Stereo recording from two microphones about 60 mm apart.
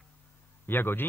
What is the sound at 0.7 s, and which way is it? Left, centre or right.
Speech, left.